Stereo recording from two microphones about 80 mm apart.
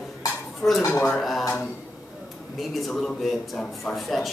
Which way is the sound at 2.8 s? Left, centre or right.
Centre.